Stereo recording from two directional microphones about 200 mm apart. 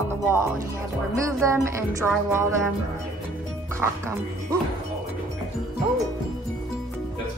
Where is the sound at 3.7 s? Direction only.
15° right (ahead or behind).